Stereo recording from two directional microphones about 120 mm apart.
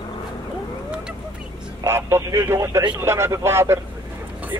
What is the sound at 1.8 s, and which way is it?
Speech, 20° right (ahead or behind).